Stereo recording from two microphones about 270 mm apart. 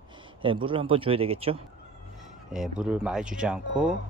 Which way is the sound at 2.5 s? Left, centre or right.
Centre.